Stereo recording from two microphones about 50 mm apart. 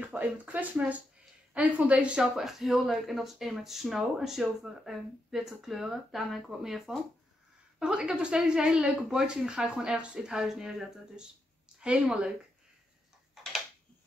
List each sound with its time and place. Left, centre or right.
0.0 s a woman's voice: right
2.2 s speech: centre
7.8 s speech: centre
11.8 s a woman's voice: centre